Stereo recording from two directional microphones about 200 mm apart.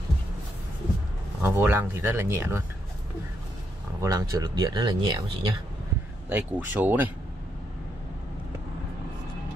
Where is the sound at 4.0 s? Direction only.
15° right (ahead or behind).